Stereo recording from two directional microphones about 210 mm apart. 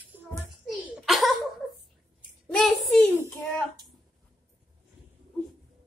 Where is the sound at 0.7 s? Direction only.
Centre (ahead or behind).